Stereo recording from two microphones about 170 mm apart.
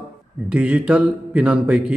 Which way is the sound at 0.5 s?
5° right (ahead or behind).